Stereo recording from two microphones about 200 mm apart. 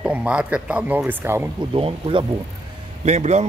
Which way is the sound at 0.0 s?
5° right (ahead or behind).